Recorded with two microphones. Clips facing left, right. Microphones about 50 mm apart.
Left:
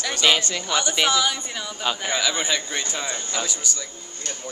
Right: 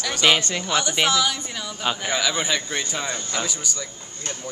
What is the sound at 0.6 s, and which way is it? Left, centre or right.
A man's voice, centre.